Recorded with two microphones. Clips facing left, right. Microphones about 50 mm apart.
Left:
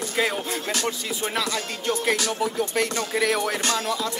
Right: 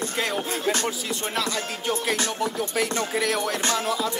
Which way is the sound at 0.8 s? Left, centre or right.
Centre.